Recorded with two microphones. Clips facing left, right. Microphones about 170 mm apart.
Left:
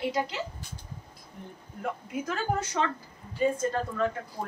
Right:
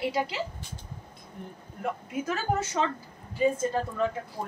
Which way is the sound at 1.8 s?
5° right (ahead or behind).